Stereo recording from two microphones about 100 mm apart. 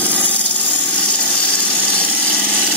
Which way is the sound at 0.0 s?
15° left (ahead or behind).